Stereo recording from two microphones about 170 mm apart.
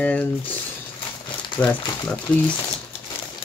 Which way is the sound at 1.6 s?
10° left (ahead or behind).